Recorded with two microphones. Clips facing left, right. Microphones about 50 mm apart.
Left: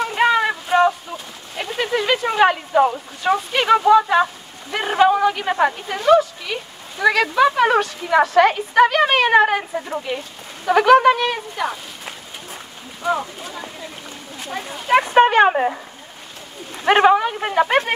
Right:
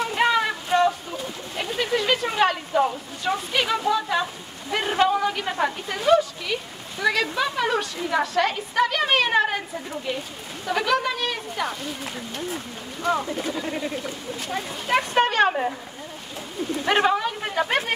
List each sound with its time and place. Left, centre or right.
0.0 s a sound: centre
1.1 s a sound: centre
1.8 s speech: centre
4.8 s a sound: centre
5.5 s a woman's voice: left
5.9 s speech: centre
7.3 s a woman's voice: left
11.5 s a woman's voice: centre; by 15.8 s left
16.8 s a woman's voice: left